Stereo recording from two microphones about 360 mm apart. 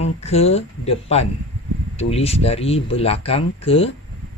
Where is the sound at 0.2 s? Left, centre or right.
Centre.